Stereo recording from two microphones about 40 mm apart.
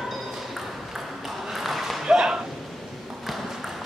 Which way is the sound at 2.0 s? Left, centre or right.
Centre.